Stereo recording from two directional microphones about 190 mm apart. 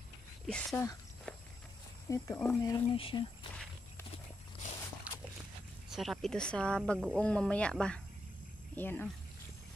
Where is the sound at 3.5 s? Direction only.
5° left (ahead or behind).